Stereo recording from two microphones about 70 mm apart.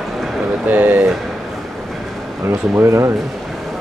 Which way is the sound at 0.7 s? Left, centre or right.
Right.